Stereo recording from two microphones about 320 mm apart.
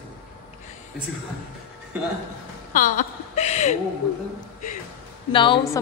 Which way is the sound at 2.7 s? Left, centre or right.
Left.